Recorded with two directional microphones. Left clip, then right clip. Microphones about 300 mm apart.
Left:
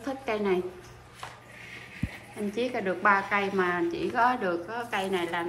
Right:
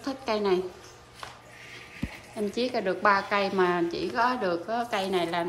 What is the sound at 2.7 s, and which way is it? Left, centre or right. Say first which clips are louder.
A woman's voice: even; centre.